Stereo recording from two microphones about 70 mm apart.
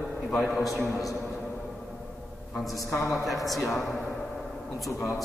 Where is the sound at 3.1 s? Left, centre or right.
Centre.